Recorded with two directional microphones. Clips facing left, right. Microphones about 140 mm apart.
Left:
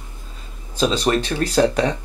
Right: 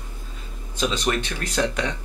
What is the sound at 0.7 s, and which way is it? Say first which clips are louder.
Speech: left 5 dB; 35° left (ahead or behind).